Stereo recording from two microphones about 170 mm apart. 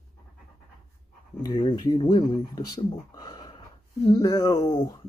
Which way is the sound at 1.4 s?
25° left (ahead or behind).